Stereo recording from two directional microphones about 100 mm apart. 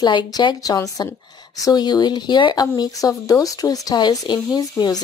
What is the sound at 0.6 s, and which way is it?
Speech, 35° left (ahead or behind).